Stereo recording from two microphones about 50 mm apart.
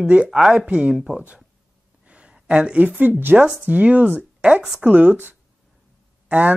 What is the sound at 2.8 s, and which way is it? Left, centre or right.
Speech, right.